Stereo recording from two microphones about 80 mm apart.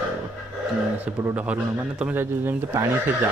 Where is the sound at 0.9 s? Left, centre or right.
Centre.